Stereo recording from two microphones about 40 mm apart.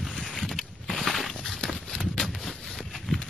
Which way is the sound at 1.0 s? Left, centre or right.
Centre.